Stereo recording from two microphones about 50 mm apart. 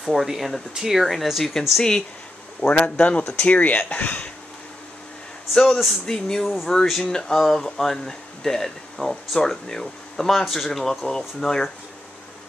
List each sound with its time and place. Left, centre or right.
0.0 s speech: centre
1.8 s speech: centre
2.6 s speech: left
6.0 s speech: centre
6.4 s speech: centre
7.0 s speech: centre